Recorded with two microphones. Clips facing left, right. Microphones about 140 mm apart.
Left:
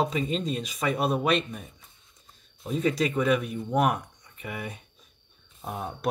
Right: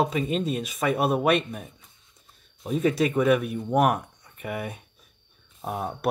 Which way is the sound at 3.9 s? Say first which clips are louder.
Right 3 dB; centre (ahead or behind).